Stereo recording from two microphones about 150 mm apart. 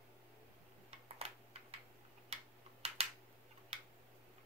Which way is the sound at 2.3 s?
45° right (ahead or behind).